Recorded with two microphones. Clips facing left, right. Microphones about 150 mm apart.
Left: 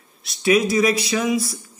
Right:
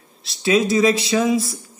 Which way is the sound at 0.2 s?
25° right (ahead or behind).